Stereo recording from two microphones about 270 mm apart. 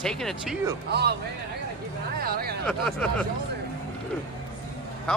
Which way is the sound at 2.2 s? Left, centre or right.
Right.